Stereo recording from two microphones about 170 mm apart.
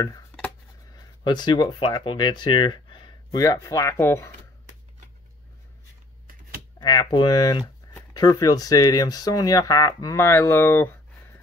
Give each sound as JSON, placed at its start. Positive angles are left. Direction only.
{"t": 0.9, "sound": "speech", "side_deg": 25}
{"t": 6.8, "sound": "speech", "side_deg": 25}